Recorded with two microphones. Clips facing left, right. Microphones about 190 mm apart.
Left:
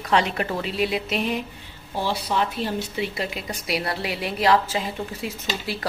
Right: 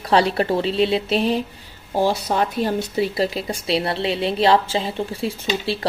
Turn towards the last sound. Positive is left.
turn(degrees=-30)  # may be behind; listen again after turning